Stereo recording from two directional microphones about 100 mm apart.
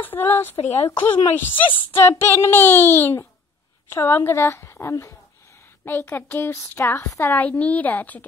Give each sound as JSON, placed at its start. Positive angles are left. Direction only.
{"t": 0.0, "sound": "a woman's voice", "side_deg": 20}